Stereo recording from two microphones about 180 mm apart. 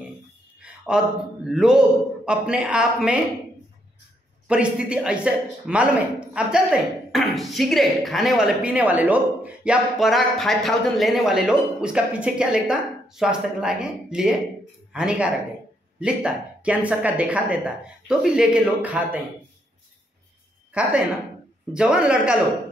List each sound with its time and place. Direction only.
0.6 s speech: 5° right (ahead or behind)
4.5 s speech: 5° right (ahead or behind)
21.7 s speech: 5° right (ahead or behind)